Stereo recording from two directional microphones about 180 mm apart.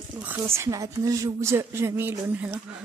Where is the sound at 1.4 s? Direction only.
15° right (ahead or behind).